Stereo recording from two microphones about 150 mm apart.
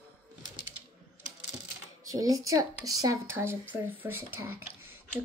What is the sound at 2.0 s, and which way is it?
A child's voice, 25° right (ahead or behind).